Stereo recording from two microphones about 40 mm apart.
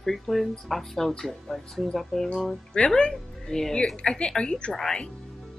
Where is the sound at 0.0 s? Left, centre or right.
Centre.